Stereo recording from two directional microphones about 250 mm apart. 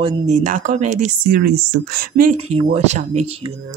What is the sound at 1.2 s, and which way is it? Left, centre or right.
Speech, right.